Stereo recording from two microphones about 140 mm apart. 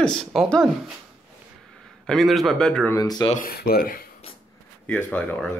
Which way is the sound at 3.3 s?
90° left.